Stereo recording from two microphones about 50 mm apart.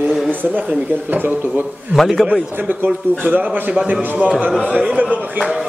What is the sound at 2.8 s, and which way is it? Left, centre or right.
A man's voice, right.